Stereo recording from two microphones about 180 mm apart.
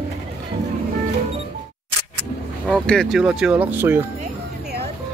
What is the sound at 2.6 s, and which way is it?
Speech, 5° left (ahead or behind).